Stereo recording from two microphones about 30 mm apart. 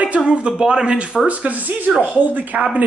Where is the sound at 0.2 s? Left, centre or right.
Right.